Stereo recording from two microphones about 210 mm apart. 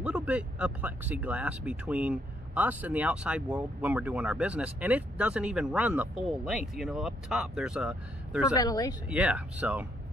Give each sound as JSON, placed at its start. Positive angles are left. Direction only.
{"t": 0.0, "sound": "speech", "side_deg": -5}
{"t": 8.5, "sound": "speech", "side_deg": 15}
{"t": 9.1, "sound": "speech", "side_deg": -5}